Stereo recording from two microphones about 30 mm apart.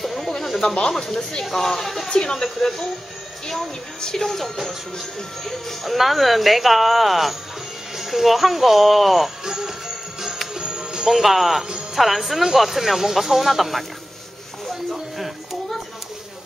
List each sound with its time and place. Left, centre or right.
0.0 s snake: centre
0.4 s a sound: centre
0.8 s speech: centre
2.0 s speech: left
4.0 s speech: centre
5.9 s speech: centre
9.4 s speech: centre
10.5 s music: right
11.1 s a woman's voice: centre
14.9 s a sound: centre